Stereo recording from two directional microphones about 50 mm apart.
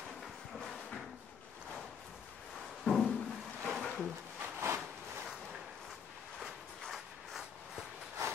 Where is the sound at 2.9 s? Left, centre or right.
Centre.